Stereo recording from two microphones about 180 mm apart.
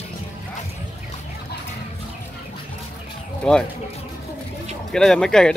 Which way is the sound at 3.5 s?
5° left (ahead or behind).